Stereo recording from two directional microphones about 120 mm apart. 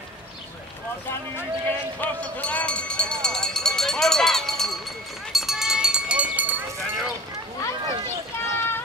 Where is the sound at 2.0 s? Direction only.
10° left (ahead or behind); by 6.6 s 10° right (ahead or behind).